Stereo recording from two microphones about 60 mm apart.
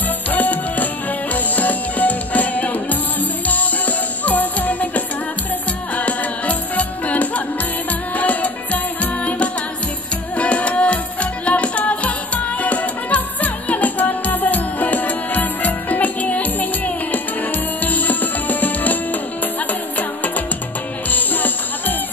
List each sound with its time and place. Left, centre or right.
0.3 s music: left
21.1 s music: left